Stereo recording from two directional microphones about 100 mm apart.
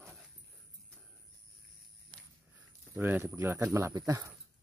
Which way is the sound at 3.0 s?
20° right (ahead or behind).